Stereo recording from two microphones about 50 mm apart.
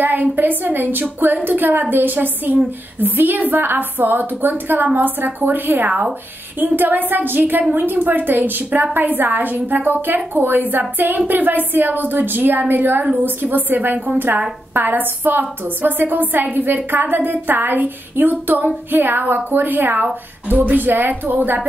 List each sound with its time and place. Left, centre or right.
0.0 s a woman's voice: right
20.5 s speech: right
20.8 s a woman's voice: right